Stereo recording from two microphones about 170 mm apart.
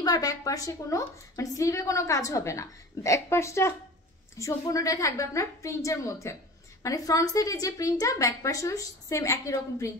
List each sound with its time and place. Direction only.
0.0 s a woman's voice: 20° left (ahead or behind)